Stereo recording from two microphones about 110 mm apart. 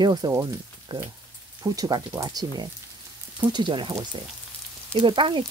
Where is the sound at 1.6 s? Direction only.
35° right (ahead or behind).